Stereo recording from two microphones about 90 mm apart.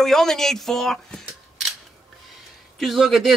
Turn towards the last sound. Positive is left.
turn(degrees=0)  # may be behind; listen again after turning